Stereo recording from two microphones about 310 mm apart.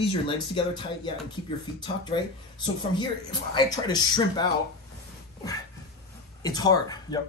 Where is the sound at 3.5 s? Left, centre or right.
Centre.